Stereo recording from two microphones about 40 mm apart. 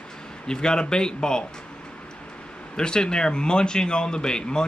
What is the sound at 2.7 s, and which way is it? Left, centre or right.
Speech, left.